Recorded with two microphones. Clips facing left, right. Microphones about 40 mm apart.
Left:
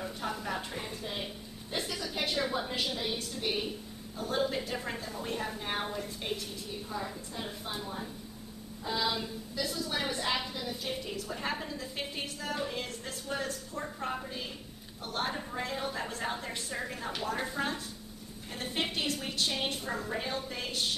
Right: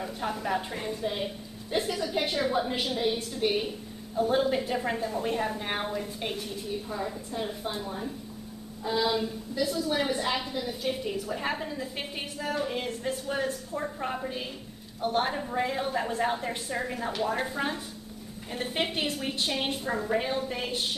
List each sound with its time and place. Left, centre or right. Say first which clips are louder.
0.0 s a woman's voice: right 4 dB; centre
15.0 s a woman's voice: right 7 dB; right